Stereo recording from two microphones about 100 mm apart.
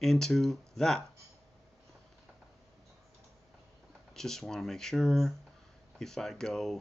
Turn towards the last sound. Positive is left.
turn(degrees=5)  # may be behind; listen again after turning